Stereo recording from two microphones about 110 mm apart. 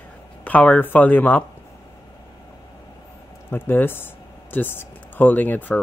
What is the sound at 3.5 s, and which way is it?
Speech, 20° left (ahead or behind).